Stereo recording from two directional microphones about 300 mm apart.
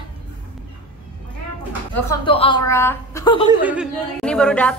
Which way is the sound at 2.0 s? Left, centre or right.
Centre.